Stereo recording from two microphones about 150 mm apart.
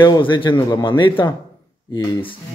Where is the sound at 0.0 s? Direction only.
30° left (ahead or behind).